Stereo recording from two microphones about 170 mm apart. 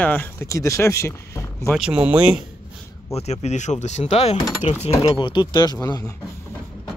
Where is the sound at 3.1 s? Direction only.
40° left (ahead or behind); by 5.8 s 25° left (ahead or behind).